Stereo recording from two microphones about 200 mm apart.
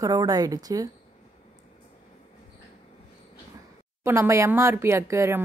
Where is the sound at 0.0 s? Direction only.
20° right (ahead or behind).